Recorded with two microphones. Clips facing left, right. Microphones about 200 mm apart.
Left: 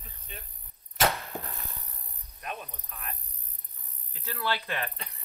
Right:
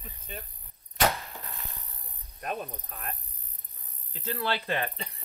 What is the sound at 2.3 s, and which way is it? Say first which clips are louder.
Speech: right 5 dB; 40° right (ahead or behind).